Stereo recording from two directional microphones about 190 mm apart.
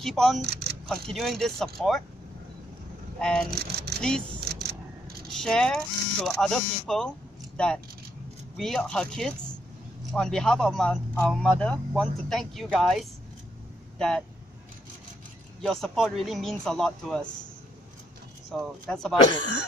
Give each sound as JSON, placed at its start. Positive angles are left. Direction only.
{"t": 0.0, "sound": "speech", "side_deg": 0}
{"t": 0.5, "sound": "a sound", "side_deg": -60}
{"t": 1.0, "sound": "speech", "side_deg": 0}
{"t": 3.2, "sound": "speech", "side_deg": 5}
{"t": 3.4, "sound": "speech", "side_deg": -55}
{"t": 4.5, "sound": "vehicle", "side_deg": -55}
{"t": 5.3, "sound": "speech", "side_deg": 5}
{"t": 15.6, "sound": "speech", "side_deg": 5}
{"t": 18.5, "sound": "speech", "side_deg": 0}